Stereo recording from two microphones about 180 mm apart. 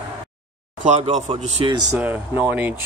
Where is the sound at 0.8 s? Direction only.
40° right (ahead or behind).